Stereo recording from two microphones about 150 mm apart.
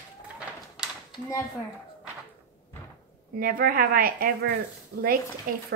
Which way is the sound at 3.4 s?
75° right (ahead or behind).